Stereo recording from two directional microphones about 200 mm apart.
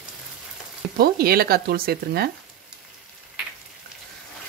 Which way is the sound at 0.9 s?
50° right (ahead or behind).